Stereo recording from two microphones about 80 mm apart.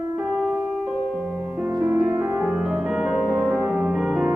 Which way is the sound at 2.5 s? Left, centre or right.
Centre.